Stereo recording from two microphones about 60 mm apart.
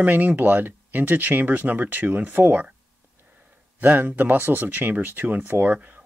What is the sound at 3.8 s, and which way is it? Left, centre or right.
Speech, right.